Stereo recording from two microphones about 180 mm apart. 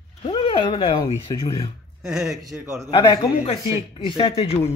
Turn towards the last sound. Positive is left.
turn(degrees=35)  # may be behind; listen again after turning